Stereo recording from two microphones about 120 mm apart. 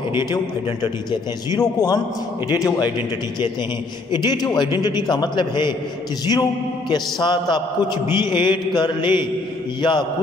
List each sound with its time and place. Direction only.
0.1 s mantra: 35° left (ahead or behind)
1.6 s a man's voice: 30° left (ahead or behind)
4.1 s mantra: 35° left (ahead or behind)
6.9 s mantra: 40° left (ahead or behind)